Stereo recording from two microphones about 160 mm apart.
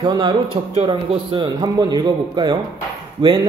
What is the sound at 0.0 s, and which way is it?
Speech, 25° right (ahead or behind).